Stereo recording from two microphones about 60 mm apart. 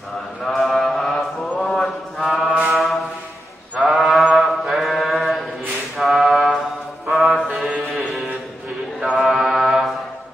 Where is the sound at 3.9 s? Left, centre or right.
Centre.